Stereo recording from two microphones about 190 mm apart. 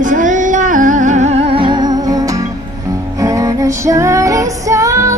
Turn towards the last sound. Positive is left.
turn(degrees=-15)  # may be behind; listen again after turning